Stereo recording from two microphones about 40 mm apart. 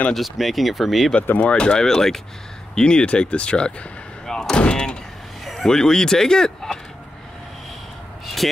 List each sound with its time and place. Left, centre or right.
0.1 s speech: centre
1.4 s speech: left
4.3 s gunshot: centre
4.6 s door: left
5.4 s vehicle: centre
5.7 s speech: centre